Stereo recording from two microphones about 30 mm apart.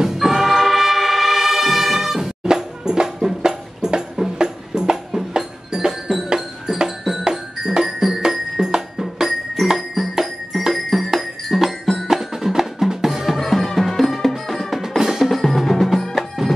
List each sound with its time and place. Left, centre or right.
0.0 s music: centre
0.5 s music: centre
2.4 s music: right
7.2 s marimba: right
7.8 s music: centre
12.1 s music: centre
13.4 s music: centre
14.8 s percussion: centre
15.2 s percussion: centre
16.4 s bagpipes: centre